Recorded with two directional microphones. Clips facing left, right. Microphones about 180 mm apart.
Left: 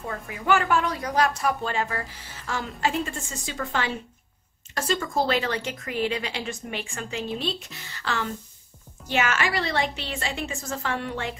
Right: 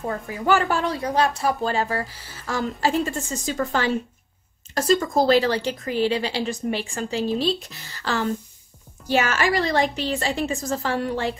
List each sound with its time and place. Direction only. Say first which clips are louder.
0.0 s a woman's voice: right 6 dB; 35° right (ahead or behind)